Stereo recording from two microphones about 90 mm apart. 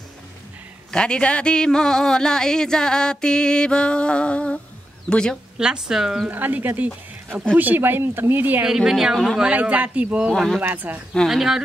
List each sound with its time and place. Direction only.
0.9 s a sound: 10° left (ahead or behind)
5.6 s a woman's voice: 5° right (ahead or behind)
6.2 s speech: 20° right (ahead or behind)
8.6 s a woman's voice: 5° right (ahead or behind)
9.4 s speech: 15° right (ahead or behind)
10.3 s a woman's voice: 5° left (ahead or behind)
10.6 s speech: 20° right (ahead or behind)
11.2 s a woman's voice: 5° right (ahead or behind)